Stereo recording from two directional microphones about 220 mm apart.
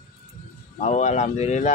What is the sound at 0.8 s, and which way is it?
Speech, 35° left (ahead or behind).